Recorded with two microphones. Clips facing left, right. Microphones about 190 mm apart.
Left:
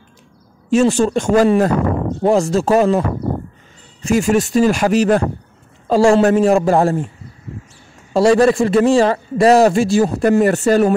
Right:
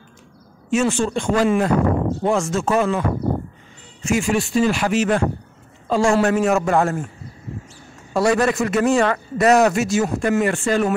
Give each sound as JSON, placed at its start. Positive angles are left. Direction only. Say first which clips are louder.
{"t": 0.7, "sound": "a man's voice", "louder": "left 6 dB", "side_deg": 35}
{"t": 4.0, "sound": "a man's voice", "louder": "left 5 dB", "side_deg": 40}
{"t": 8.1, "sound": "a man's voice", "louder": "left 6 dB", "side_deg": 30}